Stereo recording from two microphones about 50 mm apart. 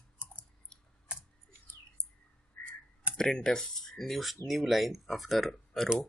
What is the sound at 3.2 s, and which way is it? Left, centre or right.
Speech, centre.